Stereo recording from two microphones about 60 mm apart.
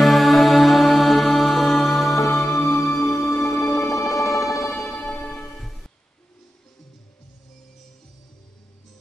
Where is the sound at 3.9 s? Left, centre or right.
Left.